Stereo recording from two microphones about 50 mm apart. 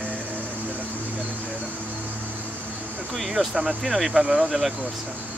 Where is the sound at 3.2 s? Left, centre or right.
Centre.